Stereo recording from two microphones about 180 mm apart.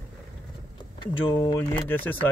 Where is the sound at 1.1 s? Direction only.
30° left (ahead or behind).